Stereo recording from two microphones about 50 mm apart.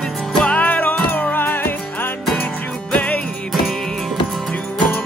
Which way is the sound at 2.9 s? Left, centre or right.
Left.